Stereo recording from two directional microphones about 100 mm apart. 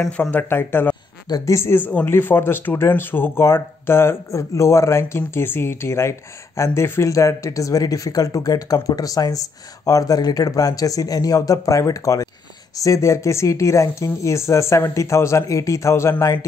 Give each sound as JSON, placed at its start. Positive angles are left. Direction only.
{"t": 0.2, "sound": "speech", "side_deg": 20}
{"t": 1.3, "sound": "speech", "side_deg": 30}